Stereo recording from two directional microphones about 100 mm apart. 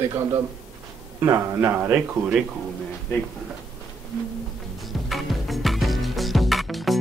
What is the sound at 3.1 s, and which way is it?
Speech, 20° left (ahead or behind).